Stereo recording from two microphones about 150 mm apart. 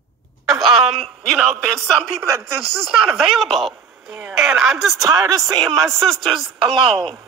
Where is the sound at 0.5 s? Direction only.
Centre (ahead or behind).